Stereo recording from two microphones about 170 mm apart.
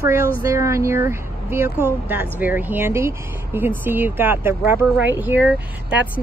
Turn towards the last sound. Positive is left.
turn(degrees=-10)  # may be behind; listen again after turning